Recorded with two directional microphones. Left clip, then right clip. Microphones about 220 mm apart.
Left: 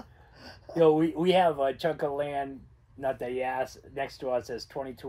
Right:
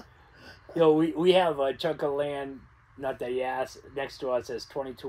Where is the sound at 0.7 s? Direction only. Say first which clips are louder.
Even; 15° right (ahead or behind).